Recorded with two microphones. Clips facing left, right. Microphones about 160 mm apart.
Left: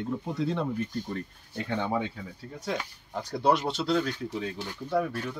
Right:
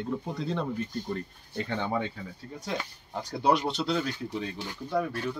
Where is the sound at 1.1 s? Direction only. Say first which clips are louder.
Right 1 dB; 5° left (ahead or behind).